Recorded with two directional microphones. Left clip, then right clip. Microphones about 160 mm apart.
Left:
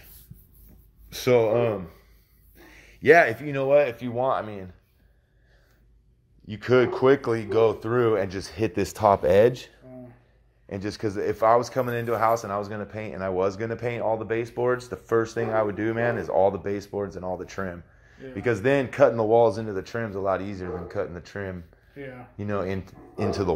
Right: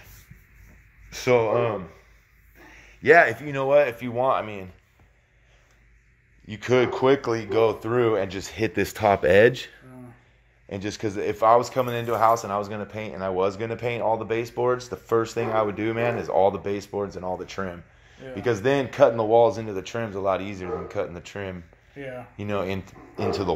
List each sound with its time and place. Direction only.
1.1 s speech: 45° left (ahead or behind); by 4.6 s 15° left (ahead or behind)
6.4 s speech: 25° left (ahead or behind)
8.5 s speech: 5° left (ahead or behind)
8.8 s speech: 15° right (ahead or behind)
10.7 s speech: 5° left (ahead or behind); by 19.7 s 30° left (ahead or behind)
19.7 s speech: 15° left (ahead or behind)
23.1 s speech: 30° left (ahead or behind)